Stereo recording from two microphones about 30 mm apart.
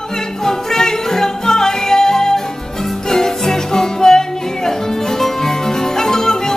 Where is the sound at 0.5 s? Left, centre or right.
Centre.